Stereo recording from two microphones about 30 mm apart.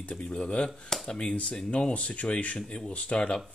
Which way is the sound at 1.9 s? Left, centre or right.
Left.